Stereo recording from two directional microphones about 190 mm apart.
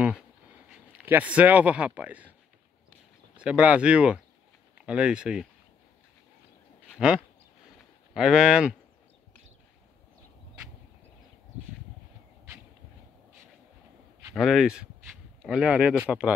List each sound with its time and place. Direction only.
1.0 s speech: 10° right (ahead or behind)
3.3 s speech: 5° right (ahead or behind)
6.9 s a sound: 5° right (ahead or behind)
8.1 s speech: centre (ahead or behind)
14.3 s speech: centre (ahead or behind)